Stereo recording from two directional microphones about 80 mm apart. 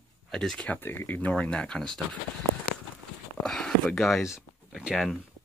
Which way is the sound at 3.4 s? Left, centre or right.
Centre.